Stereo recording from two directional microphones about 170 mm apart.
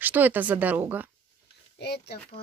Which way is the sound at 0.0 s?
10° right (ahead or behind).